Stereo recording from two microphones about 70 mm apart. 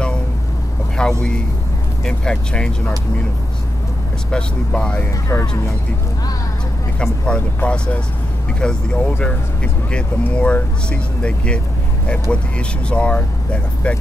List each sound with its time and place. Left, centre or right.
1.0 s vehicle: centre
2.0 s speech: centre
4.3 s speech: centre
5.3 s speech: left
7.0 s speech: centre